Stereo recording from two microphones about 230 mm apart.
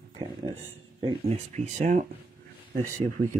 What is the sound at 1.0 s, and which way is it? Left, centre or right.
Speech, right.